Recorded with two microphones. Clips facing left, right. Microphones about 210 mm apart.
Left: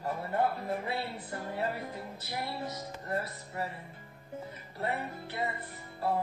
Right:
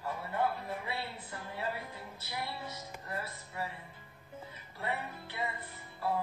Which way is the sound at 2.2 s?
40° left (ahead or behind).